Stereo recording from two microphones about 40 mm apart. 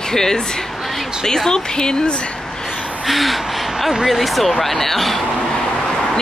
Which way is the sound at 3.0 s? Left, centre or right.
Centre.